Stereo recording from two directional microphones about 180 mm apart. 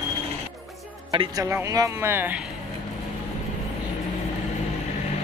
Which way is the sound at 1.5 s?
15° right (ahead or behind).